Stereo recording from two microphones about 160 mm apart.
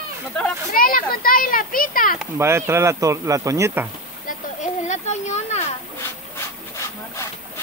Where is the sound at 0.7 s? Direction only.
65° left (ahead or behind).